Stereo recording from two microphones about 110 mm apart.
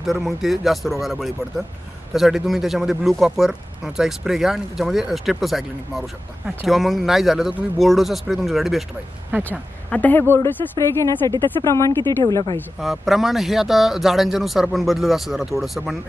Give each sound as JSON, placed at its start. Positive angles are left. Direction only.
{"t": 0.0, "sound": "speech", "side_deg": 0}
{"t": 9.4, "sound": "speech", "side_deg": 15}
{"t": 12.8, "sound": "speech", "side_deg": 0}